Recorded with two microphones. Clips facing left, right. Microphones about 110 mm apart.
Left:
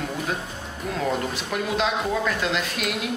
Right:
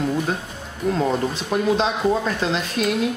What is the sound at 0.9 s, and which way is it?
A man's voice, 30° right (ahead or behind).